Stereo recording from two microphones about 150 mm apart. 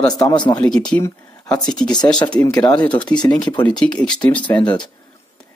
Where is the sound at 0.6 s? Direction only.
5° left (ahead or behind).